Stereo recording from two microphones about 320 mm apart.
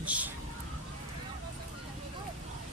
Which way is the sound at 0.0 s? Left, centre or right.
Centre.